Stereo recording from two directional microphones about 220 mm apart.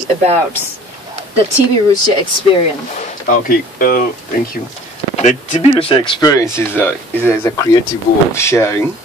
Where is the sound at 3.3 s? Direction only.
40° left (ahead or behind).